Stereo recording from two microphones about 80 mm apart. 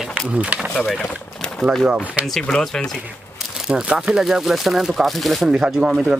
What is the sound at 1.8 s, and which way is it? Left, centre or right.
Speech, centre.